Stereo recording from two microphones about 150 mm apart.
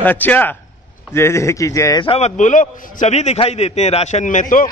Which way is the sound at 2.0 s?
40° left (ahead or behind).